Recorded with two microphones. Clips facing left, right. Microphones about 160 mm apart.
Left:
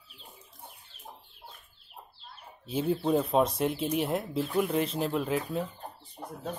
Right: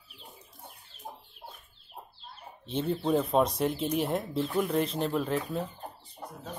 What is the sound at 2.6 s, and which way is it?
Speech, 5° left (ahead or behind).